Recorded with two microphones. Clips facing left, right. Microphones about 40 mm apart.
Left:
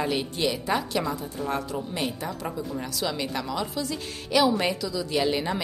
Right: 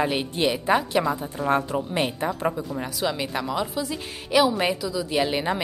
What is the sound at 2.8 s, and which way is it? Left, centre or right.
A woman's voice, centre.